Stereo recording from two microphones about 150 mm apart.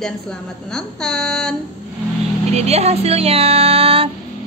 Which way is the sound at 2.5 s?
45° right (ahead or behind).